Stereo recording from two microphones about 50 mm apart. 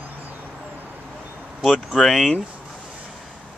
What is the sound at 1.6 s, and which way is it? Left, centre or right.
Speech, centre.